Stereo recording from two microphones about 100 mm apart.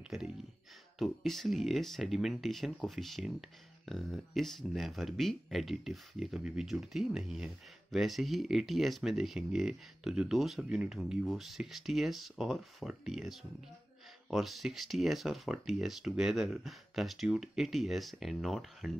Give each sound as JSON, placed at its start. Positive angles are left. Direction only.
{"t": 0.9, "sound": "speech", "side_deg": 0}